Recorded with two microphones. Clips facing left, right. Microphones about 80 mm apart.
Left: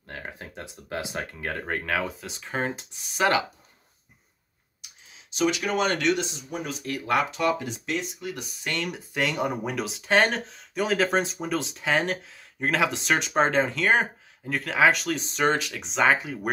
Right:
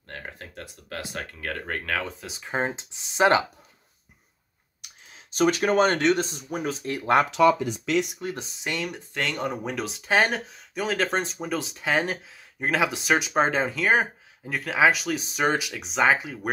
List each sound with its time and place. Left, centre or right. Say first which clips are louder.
0.0 s speech: left 1 dB; centre
2.2 s speech: even; centre
2.5 s speech: right 2 dB; right
5.1 s speech: right 3 dB; right
6.8 s speech: right 3 dB; right
7.9 s speech: right 6 dB; right
8.2 s speech: right 2 dB; right
8.6 s speech: even; centre
8.9 s speech: left 2 dB; centre